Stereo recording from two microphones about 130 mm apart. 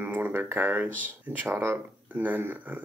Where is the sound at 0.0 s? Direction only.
15° right (ahead or behind).